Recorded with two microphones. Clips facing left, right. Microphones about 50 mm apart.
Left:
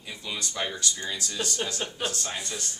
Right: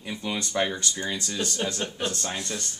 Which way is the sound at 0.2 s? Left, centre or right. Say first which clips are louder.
Right 4 dB; right.